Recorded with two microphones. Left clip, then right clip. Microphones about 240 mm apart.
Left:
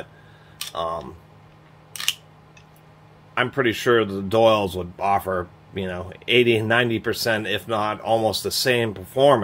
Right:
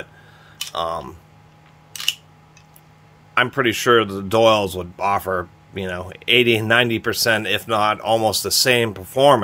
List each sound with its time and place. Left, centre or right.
0.7 s speech: right
3.3 s speech: right